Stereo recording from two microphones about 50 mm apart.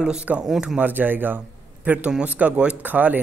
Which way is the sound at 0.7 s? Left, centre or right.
Right.